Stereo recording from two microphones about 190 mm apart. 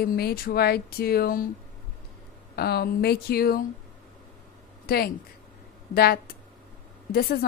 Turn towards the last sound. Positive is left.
turn(degrees=55)  # may be behind; listen again after turning